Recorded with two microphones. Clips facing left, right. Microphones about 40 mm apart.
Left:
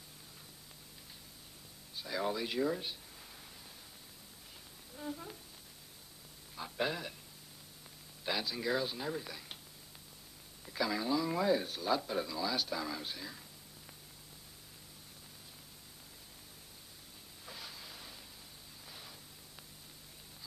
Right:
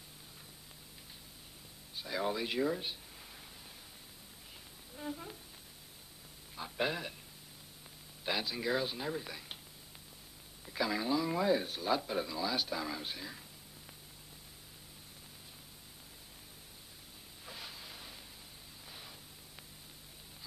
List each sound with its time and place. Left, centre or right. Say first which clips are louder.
2.0 s speech: right 1 dB; centre
4.9 s humming: right 1 dB; centre
6.5 s a man's voice: right 1 dB; centre
8.3 s a man's voice: right 1 dB; centre
10.7 s a man's voice: even; centre
17.5 s a sound: right 1 dB; centre
18.9 s static: right 1 dB; centre